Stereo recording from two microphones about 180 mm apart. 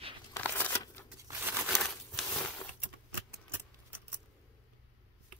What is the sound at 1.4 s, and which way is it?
Crumpling, centre (ahead or behind).